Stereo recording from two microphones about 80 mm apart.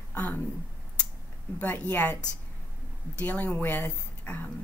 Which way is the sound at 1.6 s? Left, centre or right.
Centre.